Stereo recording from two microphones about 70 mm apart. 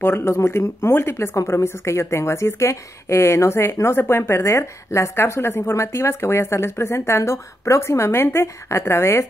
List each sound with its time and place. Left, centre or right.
0.0 s a woman's voice: left